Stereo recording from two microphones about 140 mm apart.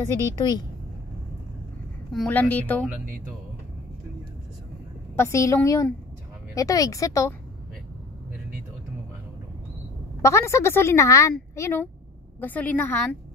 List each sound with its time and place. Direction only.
0.2 s a woman's voice: 30° left (ahead or behind)
2.1 s a woman's voice: 10° left (ahead or behind)
5.1 s a woman's voice: 20° left (ahead or behind)
10.2 s a woman's voice: 20° left (ahead or behind)